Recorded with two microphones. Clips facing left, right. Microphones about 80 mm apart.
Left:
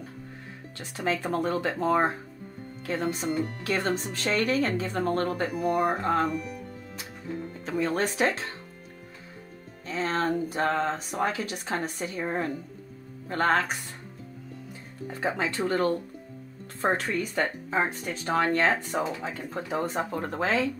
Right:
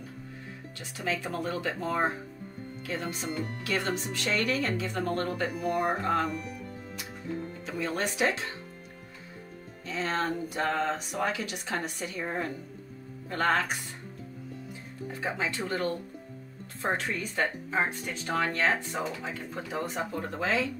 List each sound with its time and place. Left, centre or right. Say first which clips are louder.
0.7 s speech: left 4 dB; left
3.6 s speech: left 1 dB; left
5.5 s speech: left 4 dB; centre
6.0 s speech: left 3 dB; left
7.6 s speech: left 6 dB; left
9.8 s speech: left 3 dB; left
15.1 s speech: left 4 dB; left
18.9 s speech: left 4 dB; left
19.2 s speech: left 3 dB; left